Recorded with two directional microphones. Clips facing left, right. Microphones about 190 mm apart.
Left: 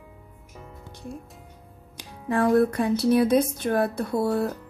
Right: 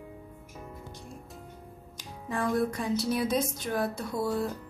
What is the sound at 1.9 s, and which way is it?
Speech, 65° left (ahead or behind).